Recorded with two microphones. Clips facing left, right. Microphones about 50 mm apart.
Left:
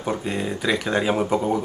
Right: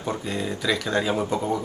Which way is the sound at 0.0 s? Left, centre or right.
Left.